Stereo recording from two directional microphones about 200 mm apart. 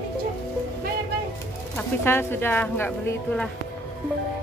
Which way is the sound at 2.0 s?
10° left (ahead or behind).